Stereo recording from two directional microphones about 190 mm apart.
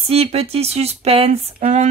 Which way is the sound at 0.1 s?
30° right (ahead or behind).